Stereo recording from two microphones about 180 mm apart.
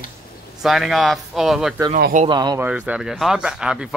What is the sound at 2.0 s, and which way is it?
Speech, 45° right (ahead or behind).